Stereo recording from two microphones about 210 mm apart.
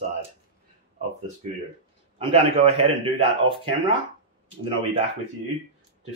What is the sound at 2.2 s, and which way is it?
A man's voice, 25° right (ahead or behind).